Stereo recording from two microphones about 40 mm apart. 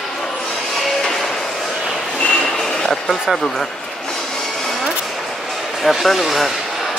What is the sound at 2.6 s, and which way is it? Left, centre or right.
Train, centre.